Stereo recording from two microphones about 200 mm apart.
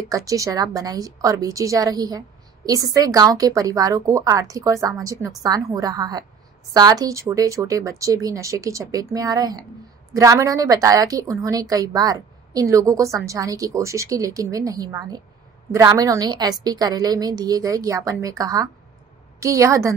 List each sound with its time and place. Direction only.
0.1 s a woman's voice: 15° right (ahead or behind)